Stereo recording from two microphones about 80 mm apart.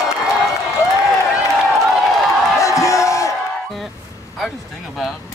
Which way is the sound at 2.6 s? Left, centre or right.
Left.